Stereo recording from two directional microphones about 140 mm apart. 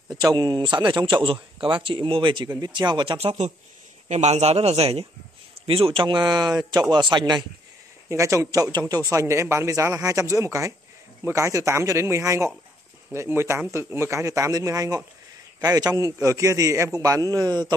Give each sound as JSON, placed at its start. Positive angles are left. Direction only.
{"t": 0.2, "sound": "speech", "side_deg": -30}
{"t": 4.1, "sound": "speech", "side_deg": -50}
{"t": 8.1, "sound": "speech", "side_deg": -20}